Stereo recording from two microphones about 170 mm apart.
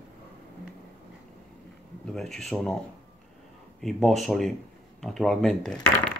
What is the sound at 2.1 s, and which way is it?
Speech, centre (ahead or behind).